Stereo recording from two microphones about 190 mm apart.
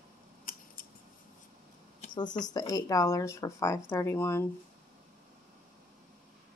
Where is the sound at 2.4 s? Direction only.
20° left (ahead or behind).